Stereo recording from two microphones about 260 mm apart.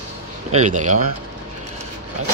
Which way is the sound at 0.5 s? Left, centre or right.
Right.